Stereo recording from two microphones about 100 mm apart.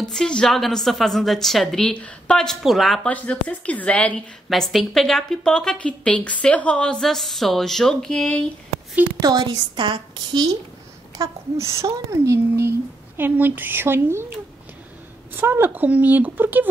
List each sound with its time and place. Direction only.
0.1 s a woman's voice: 5° left (ahead or behind)
3.1 s speech: 15° left (ahead or behind)
4.5 s a woman's voice: centre (ahead or behind)
9.2 s a woman's voice: 45° right (ahead or behind)
11.1 s speech: 30° right (ahead or behind)